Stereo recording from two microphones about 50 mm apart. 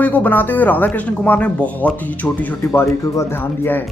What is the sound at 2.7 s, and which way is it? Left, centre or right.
Speech, left.